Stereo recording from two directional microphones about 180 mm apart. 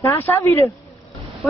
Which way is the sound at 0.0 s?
15° left (ahead or behind).